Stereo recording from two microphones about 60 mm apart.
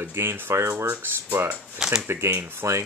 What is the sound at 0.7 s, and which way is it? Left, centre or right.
Speech, right.